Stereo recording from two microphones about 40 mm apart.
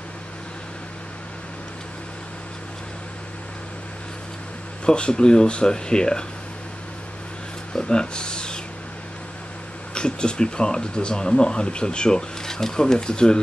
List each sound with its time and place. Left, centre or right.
4.8 s speech: left
7.7 s speech: left
9.9 s speech: left